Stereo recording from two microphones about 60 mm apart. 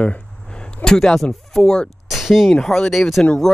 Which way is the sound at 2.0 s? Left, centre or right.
Centre.